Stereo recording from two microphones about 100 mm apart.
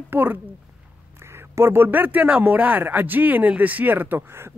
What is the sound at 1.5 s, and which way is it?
Speech, 25° right (ahead or behind).